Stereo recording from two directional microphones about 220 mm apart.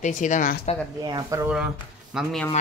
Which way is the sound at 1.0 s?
15° right (ahead or behind).